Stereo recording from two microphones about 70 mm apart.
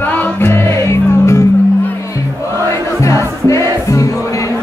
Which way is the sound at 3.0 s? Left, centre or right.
Left.